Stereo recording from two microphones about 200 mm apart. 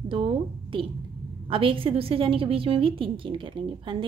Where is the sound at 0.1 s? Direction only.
25° right (ahead or behind).